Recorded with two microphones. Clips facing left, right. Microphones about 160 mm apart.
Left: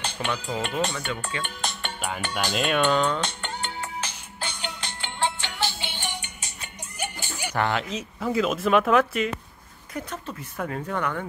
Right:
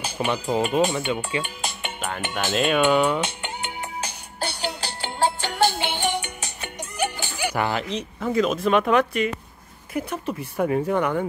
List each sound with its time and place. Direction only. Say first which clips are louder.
0.2 s speech: right 5 dB; 20° right (ahead or behind)
0.6 s speech: right 8 dB; 5° right (ahead or behind)
0.9 s speech: right 6 dB; 20° right (ahead or behind)
1.4 s music: right 1 dB; 5° right (ahead or behind)
2.5 s speech: right 4 dB; centre (ahead or behind)
4.0 s music: right 4 dB; 35° right (ahead or behind)
5.6 s music: right 10 dB; 55° right (ahead or behind)
7.5 s speech: left 1 dB; 5° right (ahead or behind)
7.9 s speech: right 2 dB; 5° left (ahead or behind)
9.9 s speech: right 6 dB; 10° right (ahead or behind)